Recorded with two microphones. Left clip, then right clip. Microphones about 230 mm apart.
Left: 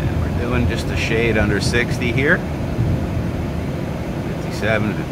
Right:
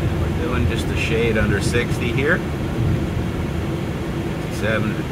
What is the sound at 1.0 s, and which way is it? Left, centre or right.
Speech, left.